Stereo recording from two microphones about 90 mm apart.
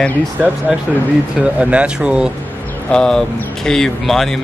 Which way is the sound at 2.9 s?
5° left (ahead or behind).